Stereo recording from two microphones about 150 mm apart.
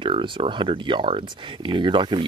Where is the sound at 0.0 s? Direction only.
35° right (ahead or behind).